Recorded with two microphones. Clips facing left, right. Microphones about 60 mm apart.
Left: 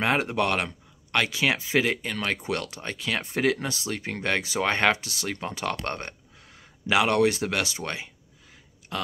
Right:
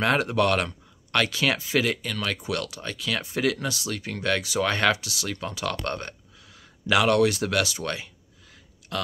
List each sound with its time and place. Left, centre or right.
0.0 s speech: left